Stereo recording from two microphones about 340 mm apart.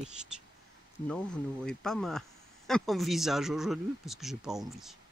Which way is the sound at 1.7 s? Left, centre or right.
Centre.